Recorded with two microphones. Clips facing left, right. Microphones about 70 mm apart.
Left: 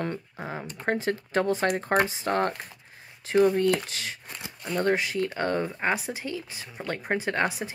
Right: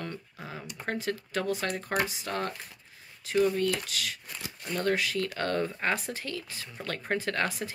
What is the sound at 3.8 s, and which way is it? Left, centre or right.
Speech, left.